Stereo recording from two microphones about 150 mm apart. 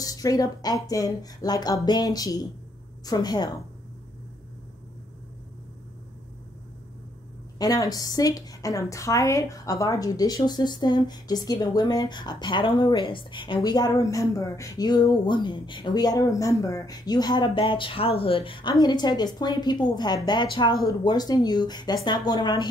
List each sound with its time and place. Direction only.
0.0 s a woman's voice: 25° left (ahead or behind)
7.5 s a woman's voice: 25° left (ahead or behind)